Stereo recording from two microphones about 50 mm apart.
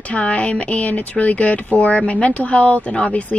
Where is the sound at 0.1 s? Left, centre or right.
Left.